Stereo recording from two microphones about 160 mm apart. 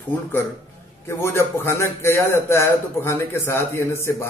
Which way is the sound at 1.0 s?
15° left (ahead or behind).